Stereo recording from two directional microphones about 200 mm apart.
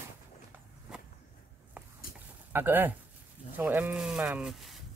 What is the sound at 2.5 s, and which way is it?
Speech, 10° right (ahead or behind).